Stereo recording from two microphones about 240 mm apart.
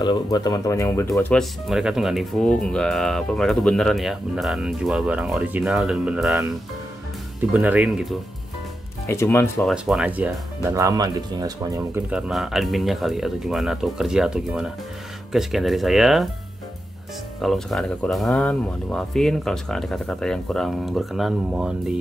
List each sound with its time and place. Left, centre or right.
0.0 s speech: centre
7.5 s speech: centre
9.0 s speech: centre
9.7 s speech: centre
12.1 s speech: centre
17.4 s speech: centre